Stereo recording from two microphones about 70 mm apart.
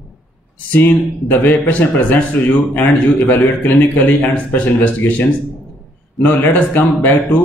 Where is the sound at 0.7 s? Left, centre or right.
Left.